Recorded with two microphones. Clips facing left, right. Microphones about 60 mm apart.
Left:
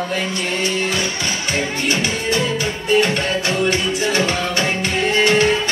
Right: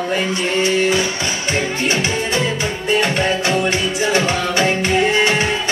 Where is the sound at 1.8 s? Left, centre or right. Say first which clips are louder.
Right 1 dB; right.